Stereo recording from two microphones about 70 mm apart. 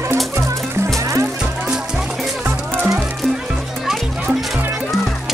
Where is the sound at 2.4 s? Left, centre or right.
Right.